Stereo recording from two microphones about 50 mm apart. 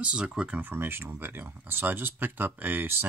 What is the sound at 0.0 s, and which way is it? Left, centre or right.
Speech, right.